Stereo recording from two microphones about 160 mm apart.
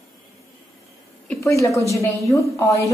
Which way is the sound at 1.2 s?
20° left (ahead or behind).